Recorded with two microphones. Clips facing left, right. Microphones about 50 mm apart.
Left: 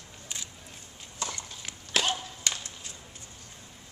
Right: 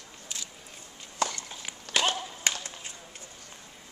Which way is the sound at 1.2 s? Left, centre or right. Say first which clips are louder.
Right 6 dB; right.